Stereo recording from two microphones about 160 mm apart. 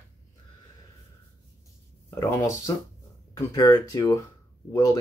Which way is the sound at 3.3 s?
20° left (ahead or behind).